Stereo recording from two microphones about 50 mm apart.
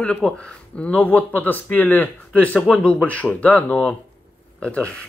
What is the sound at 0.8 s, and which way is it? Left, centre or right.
Speech, left.